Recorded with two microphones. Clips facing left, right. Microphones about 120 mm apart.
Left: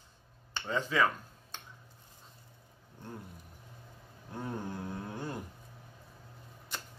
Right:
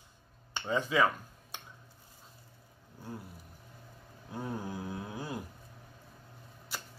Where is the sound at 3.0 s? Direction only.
5° right (ahead or behind).